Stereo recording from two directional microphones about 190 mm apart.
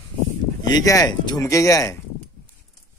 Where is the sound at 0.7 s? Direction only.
20° left (ahead or behind).